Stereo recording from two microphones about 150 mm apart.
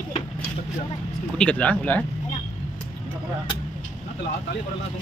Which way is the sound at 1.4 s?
10° left (ahead or behind).